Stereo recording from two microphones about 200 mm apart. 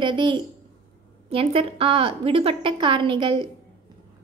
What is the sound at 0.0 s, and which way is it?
A woman's voice, 25° right (ahead or behind).